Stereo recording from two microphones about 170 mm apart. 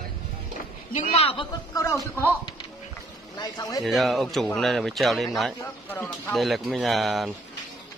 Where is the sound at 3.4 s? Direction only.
20° left (ahead or behind).